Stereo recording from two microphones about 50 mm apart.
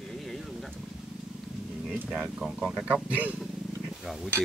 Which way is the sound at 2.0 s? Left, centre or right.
Centre.